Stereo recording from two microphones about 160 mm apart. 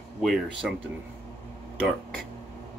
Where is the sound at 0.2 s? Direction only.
Centre (ahead or behind).